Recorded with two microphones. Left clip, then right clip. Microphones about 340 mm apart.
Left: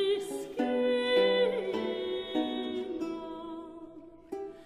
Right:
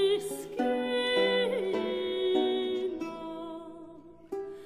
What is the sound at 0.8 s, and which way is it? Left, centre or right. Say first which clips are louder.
Music: left 3 dB; right.